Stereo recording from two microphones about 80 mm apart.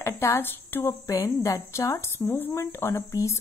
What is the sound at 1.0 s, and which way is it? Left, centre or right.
A woman's voice, left.